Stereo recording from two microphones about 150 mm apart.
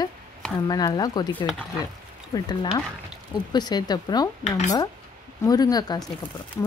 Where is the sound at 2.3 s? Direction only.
25° left (ahead or behind).